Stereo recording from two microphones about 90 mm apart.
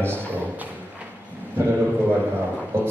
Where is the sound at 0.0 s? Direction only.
25° right (ahead or behind).